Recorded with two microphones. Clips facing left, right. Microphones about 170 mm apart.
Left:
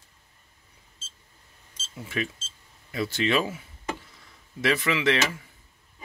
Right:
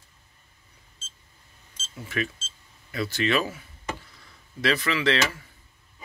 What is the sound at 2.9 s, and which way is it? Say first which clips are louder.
Speech: even; 20° left (ahead or behind).